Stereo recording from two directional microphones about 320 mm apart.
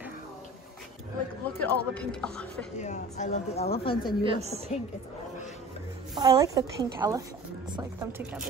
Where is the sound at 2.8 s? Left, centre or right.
Left.